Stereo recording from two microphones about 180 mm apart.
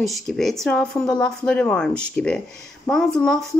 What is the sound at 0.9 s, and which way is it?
Speech, 20° left (ahead or behind).